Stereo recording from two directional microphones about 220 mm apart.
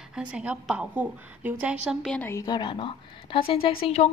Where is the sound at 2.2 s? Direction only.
15° left (ahead or behind).